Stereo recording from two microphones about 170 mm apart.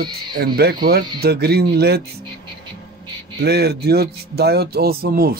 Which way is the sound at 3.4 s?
70° right (ahead or behind).